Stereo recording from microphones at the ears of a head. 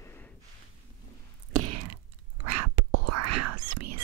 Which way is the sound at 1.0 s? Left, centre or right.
Right.